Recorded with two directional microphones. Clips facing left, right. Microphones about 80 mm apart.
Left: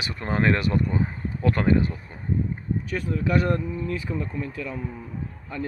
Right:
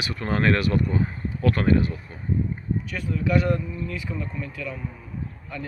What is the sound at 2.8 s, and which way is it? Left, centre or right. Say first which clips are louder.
Speech: left 1 dB; left.